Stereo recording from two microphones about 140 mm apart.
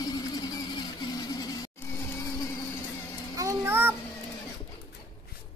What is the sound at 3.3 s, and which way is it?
Child singing, 25° right (ahead or behind).